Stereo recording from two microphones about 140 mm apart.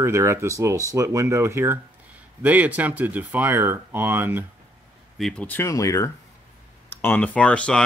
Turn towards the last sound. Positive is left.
turn(degrees=10)  # may be behind; listen again after turning